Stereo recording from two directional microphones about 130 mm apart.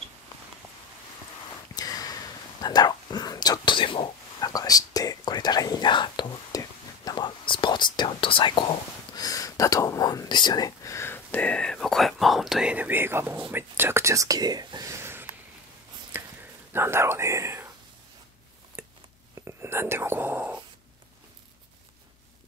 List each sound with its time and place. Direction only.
1.8 s a sound: 30° left (ahead or behind)
2.6 s whispering: 30° left (ahead or behind)
9.1 s speech: 30° left (ahead or behind); by 15.2 s 20° right (ahead or behind)
16.7 s speech: 20° right (ahead or behind)
18.8 s a sound: 15° right (ahead or behind)
19.3 s whispering: 20° right (ahead or behind)